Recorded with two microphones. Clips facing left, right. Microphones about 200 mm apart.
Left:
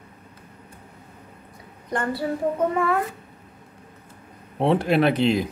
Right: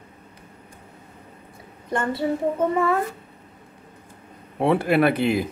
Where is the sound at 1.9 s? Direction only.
25° right (ahead or behind).